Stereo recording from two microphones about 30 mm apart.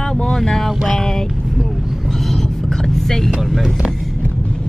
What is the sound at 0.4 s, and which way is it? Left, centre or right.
Speech, centre.